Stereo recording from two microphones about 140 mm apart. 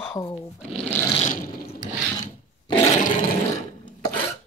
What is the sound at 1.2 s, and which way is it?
Water, 85° left.